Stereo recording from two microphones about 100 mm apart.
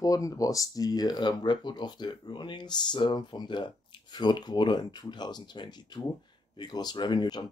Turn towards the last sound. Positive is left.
turn(degrees=45)  # may be behind; listen again after turning